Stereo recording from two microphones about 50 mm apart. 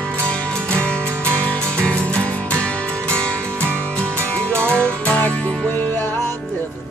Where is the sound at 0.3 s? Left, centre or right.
Left.